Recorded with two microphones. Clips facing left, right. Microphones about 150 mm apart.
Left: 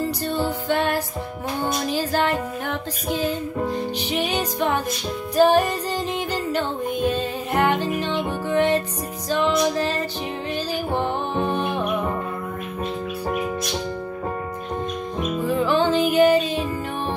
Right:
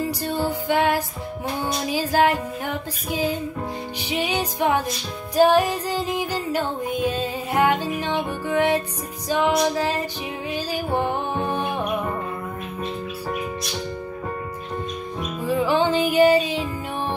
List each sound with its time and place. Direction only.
0.0 s music: 10° right (ahead or behind)
15.4 s music: 10° right (ahead or behind)